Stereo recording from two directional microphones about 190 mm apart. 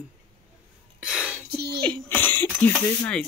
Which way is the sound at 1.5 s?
60° right (ahead or behind).